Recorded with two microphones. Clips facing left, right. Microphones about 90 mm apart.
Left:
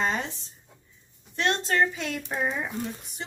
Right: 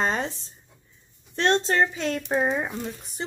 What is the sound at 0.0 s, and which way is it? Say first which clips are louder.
Speech: right 2 dB; 35° right (ahead or behind).